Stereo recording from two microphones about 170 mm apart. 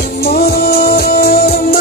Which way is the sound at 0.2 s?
65° left (ahead or behind).